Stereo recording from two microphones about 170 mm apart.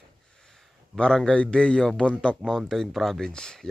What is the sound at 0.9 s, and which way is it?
A man's voice, 5° left (ahead or behind).